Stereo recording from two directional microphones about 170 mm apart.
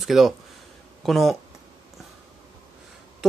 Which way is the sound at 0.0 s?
Centre (ahead or behind).